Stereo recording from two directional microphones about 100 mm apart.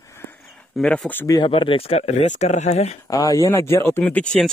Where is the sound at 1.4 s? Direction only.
60° left (ahead or behind); by 3.0 s 90° left.